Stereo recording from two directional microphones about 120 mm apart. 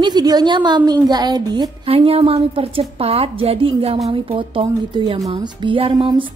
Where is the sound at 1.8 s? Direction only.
55° right (ahead or behind).